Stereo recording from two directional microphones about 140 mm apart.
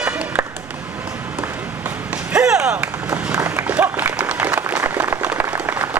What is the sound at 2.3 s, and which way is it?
Run, 5° right (ahead or behind).